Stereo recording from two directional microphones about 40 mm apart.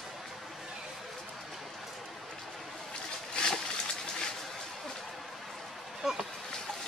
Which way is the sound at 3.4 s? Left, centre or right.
Left.